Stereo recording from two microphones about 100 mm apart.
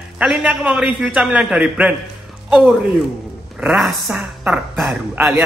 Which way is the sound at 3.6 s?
5° right (ahead or behind).